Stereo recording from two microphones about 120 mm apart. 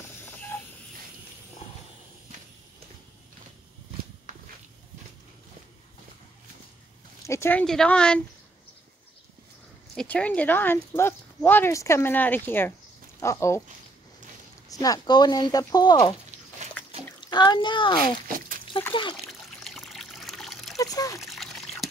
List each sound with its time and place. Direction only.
0.2 s a sound: 15° left (ahead or behind)
7.2 s speech: 20° left (ahead or behind)
7.6 s speech: 5° left (ahead or behind)
9.9 s speech: 10° left (ahead or behind)
14.7 s speech: 30° left (ahead or behind)
17.2 s a child's voice: 40° left (ahead or behind)
19.6 s trickle: centre (ahead or behind)
20.7 s water: 30° left (ahead or behind)
21.2 s trickle: centre (ahead or behind)